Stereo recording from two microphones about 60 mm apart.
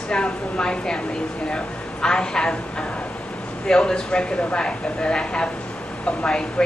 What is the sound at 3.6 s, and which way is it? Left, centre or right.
A woman's voice, centre.